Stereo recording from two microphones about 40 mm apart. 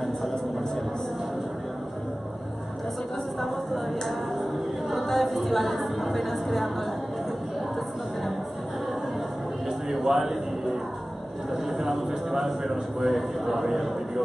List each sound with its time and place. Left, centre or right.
4.9 s a sound: centre
9.7 s music: centre
11.9 s a man's voice: centre